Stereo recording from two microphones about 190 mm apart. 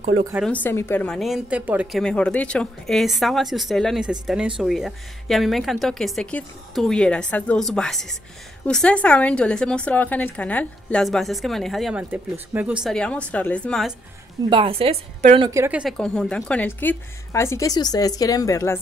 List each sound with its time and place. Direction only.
0.4 s a woman's voice: 10° left (ahead or behind)
14.5 s a woman's voice: 30° right (ahead or behind)
15.5 s a woman's voice: 15° right (ahead or behind)
15.8 s a woman's voice: centre (ahead or behind); by 18.8 s 20° left (ahead or behind)